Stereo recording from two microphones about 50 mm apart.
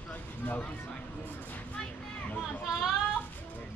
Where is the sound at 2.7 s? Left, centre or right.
Centre.